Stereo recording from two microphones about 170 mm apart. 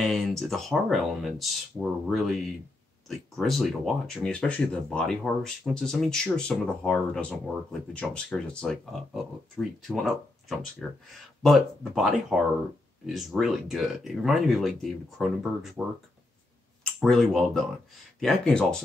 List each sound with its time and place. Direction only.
0.0 s speech: 5° left (ahead or behind)
17.0 s speech: centre (ahead or behind)